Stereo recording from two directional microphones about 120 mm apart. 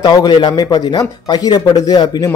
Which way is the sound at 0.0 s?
35° left (ahead or behind).